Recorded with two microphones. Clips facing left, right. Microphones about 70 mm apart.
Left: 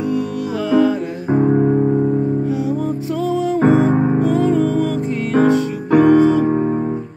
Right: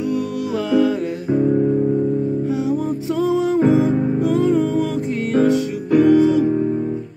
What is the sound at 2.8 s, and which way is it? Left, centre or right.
Music, centre.